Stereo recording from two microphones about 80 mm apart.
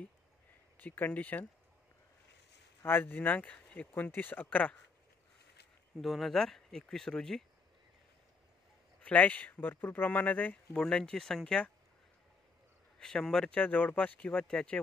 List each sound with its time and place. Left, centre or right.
0.7 s speech: left
2.8 s speech: left
5.9 s speech: centre
9.0 s speech: centre
13.0 s speech: centre